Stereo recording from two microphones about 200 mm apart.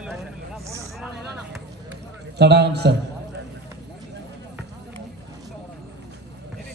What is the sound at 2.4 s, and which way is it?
Speech, 55° right (ahead or behind).